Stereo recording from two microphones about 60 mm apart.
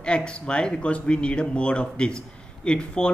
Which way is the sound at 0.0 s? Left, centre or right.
Centre.